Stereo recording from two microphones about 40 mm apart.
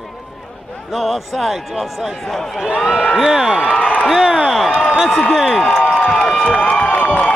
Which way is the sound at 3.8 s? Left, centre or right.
Left.